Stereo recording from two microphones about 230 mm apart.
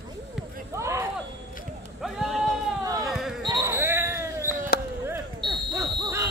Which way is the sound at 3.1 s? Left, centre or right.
Centre.